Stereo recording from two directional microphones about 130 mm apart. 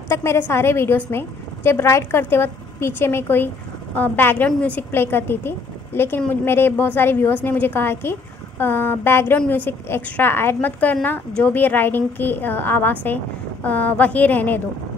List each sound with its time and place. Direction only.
0.1 s a woman's voice: 20° left (ahead or behind)